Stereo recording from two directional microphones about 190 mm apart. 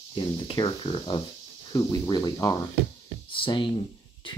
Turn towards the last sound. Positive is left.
turn(degrees=25)  # may be behind; listen again after turning